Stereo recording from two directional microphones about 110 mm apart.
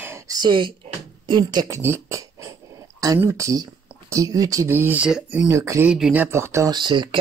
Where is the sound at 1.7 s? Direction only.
25° right (ahead or behind).